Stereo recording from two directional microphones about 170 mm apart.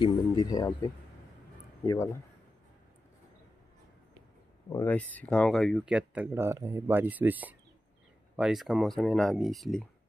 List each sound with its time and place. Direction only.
0.0 s speech: 25° left (ahead or behind)
1.8 s speech: 15° left (ahead or behind)
4.6 s speech: 15° left (ahead or behind)